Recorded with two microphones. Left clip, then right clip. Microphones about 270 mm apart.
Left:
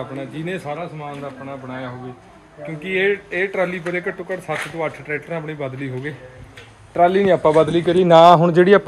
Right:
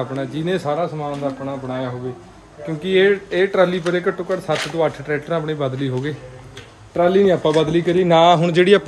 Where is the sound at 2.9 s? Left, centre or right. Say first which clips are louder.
Right 4 dB; centre.